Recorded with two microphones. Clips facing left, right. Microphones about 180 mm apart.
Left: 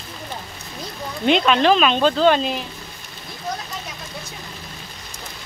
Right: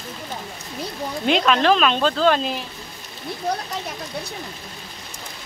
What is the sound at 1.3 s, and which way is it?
Speech, centre (ahead or behind).